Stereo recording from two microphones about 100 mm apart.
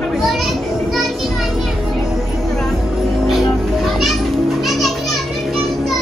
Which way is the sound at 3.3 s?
Centre (ahead or behind).